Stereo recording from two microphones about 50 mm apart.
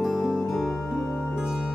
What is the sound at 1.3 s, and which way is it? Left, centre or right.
Music, centre.